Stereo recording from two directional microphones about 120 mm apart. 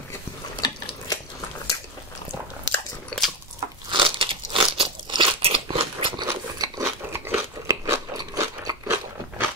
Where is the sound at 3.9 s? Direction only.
45° right (ahead or behind); by 8.9 s 25° right (ahead or behind).